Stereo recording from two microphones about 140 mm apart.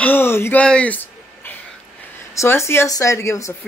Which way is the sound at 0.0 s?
15° left (ahead or behind).